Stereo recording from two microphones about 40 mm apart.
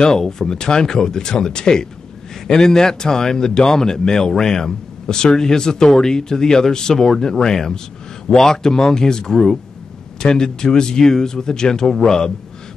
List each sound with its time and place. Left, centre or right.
0.2 s a man's voice: centre